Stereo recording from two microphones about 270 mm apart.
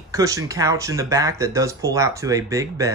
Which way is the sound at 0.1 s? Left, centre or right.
Centre.